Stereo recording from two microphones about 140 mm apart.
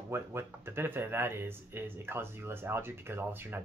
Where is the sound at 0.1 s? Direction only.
20° right (ahead or behind).